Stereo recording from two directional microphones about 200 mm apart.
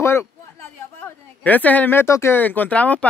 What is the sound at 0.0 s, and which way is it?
Speech, 10° left (ahead or behind).